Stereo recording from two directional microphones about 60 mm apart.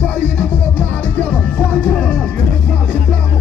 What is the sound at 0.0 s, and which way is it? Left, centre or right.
Music, left.